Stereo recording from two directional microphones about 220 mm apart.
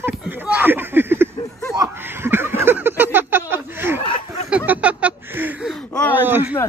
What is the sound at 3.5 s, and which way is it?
Speech, 10° right (ahead or behind).